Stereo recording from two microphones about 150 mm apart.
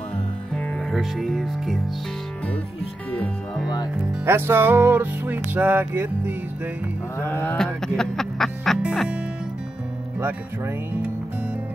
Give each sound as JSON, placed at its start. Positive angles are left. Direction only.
{"t": 0.5, "sound": "speech", "side_deg": 5}
{"t": 3.1, "sound": "speech", "side_deg": 10}
{"t": 4.3, "sound": "music", "side_deg": -15}
{"t": 7.2, "sound": "music", "side_deg": 15}